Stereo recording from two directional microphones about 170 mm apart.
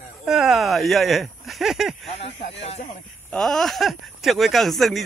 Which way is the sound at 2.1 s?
40° left (ahead or behind).